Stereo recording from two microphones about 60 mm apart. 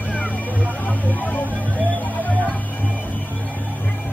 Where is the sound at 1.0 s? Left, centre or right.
Left.